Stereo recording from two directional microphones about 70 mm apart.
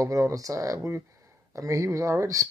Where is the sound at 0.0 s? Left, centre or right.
Right.